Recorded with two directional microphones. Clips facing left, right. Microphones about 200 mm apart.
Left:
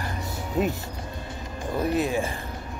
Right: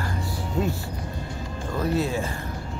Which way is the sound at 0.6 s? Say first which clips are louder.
Left 2 dB; 20° left (ahead or behind).